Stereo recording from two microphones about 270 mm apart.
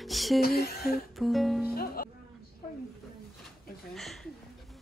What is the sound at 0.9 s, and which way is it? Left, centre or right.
Music, centre.